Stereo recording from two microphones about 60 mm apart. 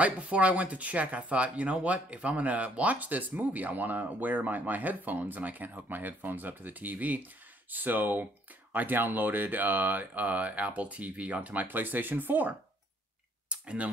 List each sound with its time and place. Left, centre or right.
0.0 s speech: right
13.5 s clicking: centre